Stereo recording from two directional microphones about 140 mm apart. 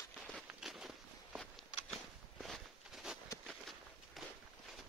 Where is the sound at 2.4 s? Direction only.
Centre (ahead or behind).